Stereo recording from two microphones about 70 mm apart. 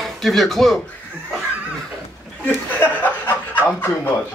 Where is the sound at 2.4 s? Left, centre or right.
Left.